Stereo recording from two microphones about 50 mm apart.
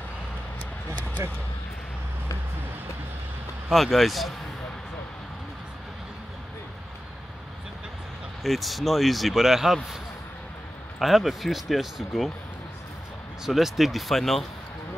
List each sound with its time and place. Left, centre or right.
1.2 s speech: right
3.7 s speech: centre
8.4 s speech: centre
11.0 s speech: centre
13.5 s speech: centre